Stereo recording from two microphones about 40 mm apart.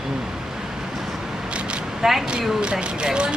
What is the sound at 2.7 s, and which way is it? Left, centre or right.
Speech, right.